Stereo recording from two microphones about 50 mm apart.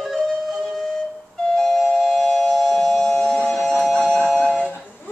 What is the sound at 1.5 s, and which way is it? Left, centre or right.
Music, centre.